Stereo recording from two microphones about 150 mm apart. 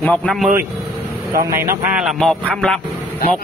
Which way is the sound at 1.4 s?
20° right (ahead or behind).